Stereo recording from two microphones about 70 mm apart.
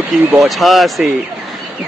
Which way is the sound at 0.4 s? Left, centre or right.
Centre.